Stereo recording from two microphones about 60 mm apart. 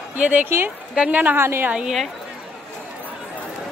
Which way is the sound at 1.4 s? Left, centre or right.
Right.